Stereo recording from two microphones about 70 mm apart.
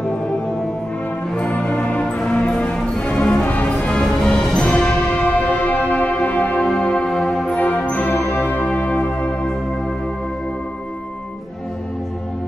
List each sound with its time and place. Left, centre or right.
1.3 s music: centre
6.6 s music: centre
7.4 s music: left